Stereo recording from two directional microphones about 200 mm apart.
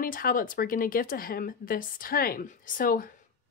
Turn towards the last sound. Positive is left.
turn(degrees=45)  # may be behind; listen again after turning